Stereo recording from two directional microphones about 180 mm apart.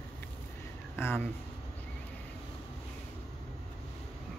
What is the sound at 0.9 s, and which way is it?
Speech, 10° left (ahead or behind).